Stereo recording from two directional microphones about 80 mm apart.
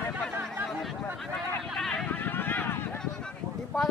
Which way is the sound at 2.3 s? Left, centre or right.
Left.